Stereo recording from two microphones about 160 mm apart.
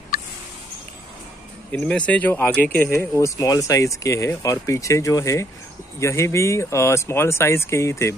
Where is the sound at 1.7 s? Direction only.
5° left (ahead or behind).